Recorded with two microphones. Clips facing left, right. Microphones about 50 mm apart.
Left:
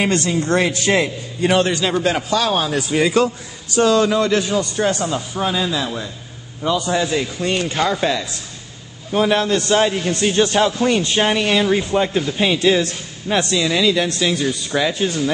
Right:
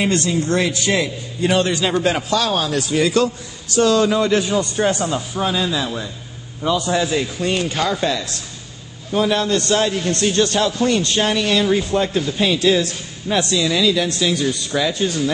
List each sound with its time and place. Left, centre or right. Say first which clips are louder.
0.0 s a man's voice: even; left
2.0 s a man's voice: even; centre
2.3 s speech: left 1 dB; centre
4.2 s a man's voice: even; centre
5.0 s a man's voice: even; centre
9.1 s a man's voice: left 1 dB; left